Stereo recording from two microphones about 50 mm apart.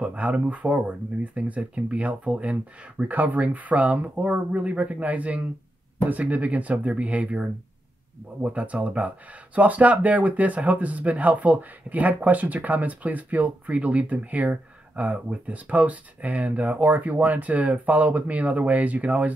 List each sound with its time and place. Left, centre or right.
0.0 s speech: right